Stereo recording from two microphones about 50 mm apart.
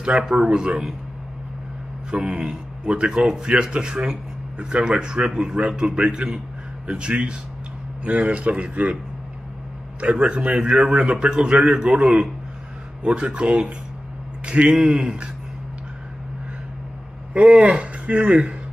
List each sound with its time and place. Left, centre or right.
0.2 s a man's voice: centre
2.0 s a man's voice: centre
9.9 s a man's voice: right
17.3 s a man's voice: right